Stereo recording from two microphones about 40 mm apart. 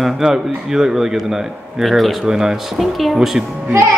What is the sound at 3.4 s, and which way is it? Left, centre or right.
Speech, right.